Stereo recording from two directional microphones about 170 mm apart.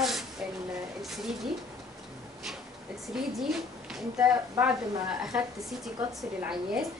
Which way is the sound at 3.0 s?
Centre (ahead or behind).